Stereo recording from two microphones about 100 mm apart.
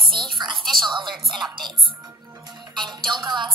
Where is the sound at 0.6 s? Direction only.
Centre (ahead or behind).